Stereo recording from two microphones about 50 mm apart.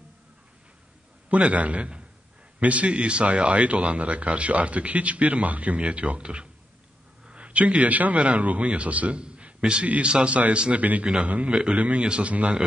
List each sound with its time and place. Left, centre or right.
1.3 s a man's voice: right